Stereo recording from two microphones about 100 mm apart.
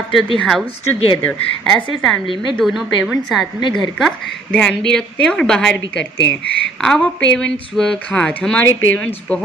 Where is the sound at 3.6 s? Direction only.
50° left (ahead or behind).